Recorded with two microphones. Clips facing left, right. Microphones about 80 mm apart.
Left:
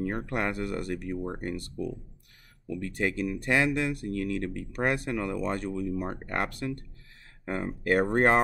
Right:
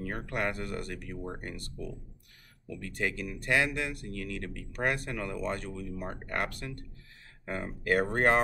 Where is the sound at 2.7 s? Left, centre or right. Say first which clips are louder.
Left 4 dB; left.